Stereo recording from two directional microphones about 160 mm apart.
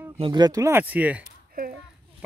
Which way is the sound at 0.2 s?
25° right (ahead or behind).